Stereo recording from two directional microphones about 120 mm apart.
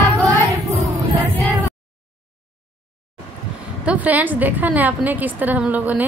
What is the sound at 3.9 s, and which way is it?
A woman's voice, 15° right (ahead or behind).